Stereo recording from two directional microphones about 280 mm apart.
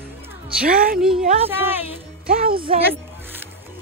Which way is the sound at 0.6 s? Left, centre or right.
Right.